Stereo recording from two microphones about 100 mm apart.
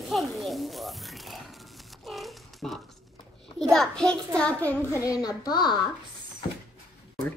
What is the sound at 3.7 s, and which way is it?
A child's voice, 5° left (ahead or behind).